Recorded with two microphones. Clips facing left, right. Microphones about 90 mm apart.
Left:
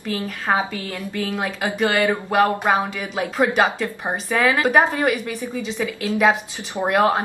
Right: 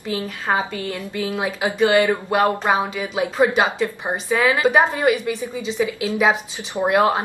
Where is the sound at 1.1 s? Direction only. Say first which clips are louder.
Even; 10° right (ahead or behind).